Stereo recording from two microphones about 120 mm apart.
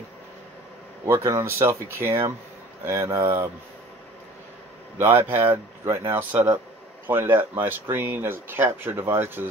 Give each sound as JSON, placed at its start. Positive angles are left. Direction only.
{"t": 1.0, "sound": "speech", "side_deg": -25}
{"t": 4.9, "sound": "speech", "side_deg": -20}